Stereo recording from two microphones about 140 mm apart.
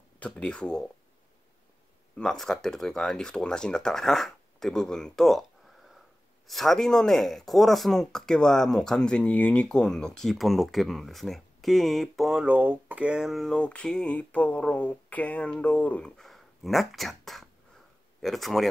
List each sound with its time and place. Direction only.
0.2 s speech: 5° left (ahead or behind)
2.1 s speech: 5° left (ahead or behind)
6.4 s speech: centre (ahead or behind)